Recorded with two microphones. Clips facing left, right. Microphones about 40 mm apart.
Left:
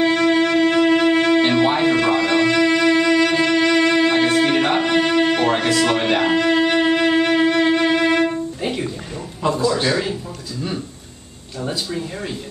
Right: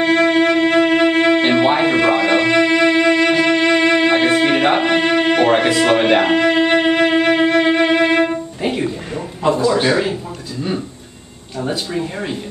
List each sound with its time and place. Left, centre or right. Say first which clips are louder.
0.0 s music: right 3 dB; right
9.4 s a man's voice: right 4 dB; centre
11.6 s speech: right 3 dB; centre